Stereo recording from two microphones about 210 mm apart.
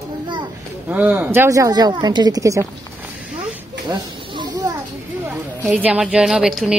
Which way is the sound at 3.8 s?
20° right (ahead or behind).